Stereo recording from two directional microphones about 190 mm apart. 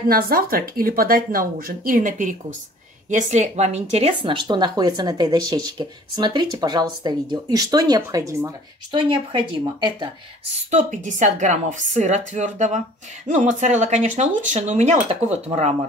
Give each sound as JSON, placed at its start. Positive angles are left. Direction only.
{"t": 0.1, "sound": "speech", "side_deg": -50}
{"t": 10.5, "sound": "speech", "side_deg": -40}